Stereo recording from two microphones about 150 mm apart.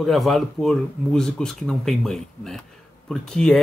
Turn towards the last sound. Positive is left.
turn(degrees=5)  # may be behind; listen again after turning